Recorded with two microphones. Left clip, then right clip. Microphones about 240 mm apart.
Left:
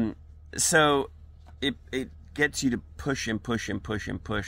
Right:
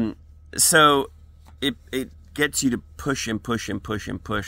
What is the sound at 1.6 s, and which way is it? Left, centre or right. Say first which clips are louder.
Speech: right 4 dB; centre.